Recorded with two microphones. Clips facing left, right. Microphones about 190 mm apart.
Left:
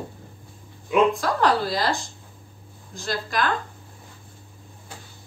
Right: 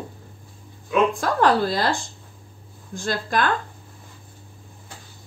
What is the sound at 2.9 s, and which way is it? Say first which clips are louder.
Speech: right 4 dB; 50° right (ahead or behind).